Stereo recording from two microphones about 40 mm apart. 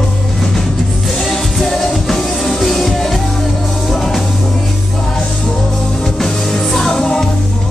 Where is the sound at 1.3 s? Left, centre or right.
Centre.